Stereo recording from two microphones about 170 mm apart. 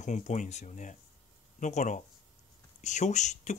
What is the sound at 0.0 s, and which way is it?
Speech, 45° left (ahead or behind).